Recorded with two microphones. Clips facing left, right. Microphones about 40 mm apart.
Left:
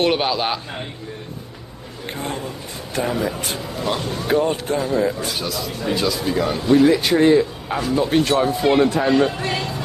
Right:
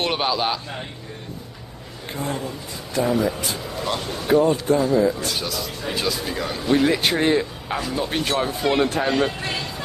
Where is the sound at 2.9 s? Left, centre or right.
Left.